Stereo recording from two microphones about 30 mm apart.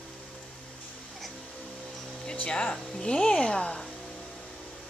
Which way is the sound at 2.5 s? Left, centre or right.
Left.